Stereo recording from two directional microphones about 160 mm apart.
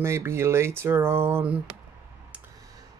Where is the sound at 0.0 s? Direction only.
15° right (ahead or behind).